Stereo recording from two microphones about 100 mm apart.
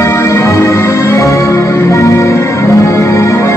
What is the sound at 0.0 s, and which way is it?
Music, 30° left (ahead or behind).